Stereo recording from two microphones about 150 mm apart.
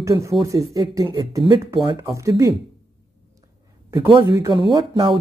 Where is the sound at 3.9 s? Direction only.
25° right (ahead or behind).